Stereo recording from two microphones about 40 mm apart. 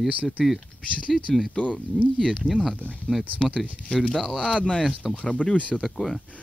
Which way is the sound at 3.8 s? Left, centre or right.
Left.